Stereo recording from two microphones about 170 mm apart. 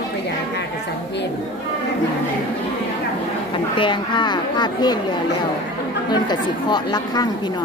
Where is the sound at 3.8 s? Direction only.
25° left (ahead or behind).